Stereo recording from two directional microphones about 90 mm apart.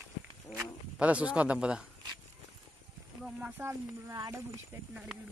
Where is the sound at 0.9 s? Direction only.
15° right (ahead or behind).